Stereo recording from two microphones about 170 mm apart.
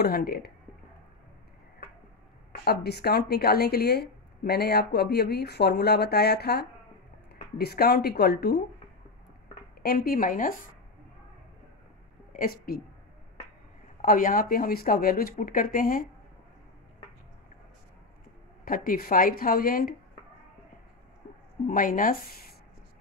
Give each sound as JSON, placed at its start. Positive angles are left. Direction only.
{"t": 0.0, "sound": "speech", "side_deg": 65}
{"t": 2.6, "sound": "speech", "side_deg": 70}
{"t": 9.8, "sound": "speech", "side_deg": 60}
{"t": 12.3, "sound": "a woman's voice", "side_deg": 55}
{"t": 14.0, "sound": "speech", "side_deg": 55}
{"t": 18.7, "sound": "speech", "side_deg": 60}
{"t": 21.6, "sound": "speech", "side_deg": 55}